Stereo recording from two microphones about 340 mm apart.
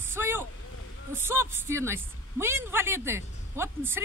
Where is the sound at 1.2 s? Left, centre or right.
Centre.